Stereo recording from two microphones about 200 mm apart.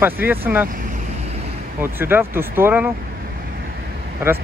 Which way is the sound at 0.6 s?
45° right (ahead or behind).